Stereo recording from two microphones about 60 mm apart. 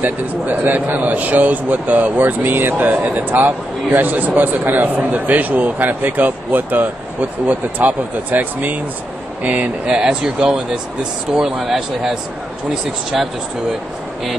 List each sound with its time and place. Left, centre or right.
0.0 s a man's voice: right
9.9 s speech: centre